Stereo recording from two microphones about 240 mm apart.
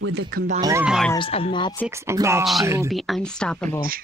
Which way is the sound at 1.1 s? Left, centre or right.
Left.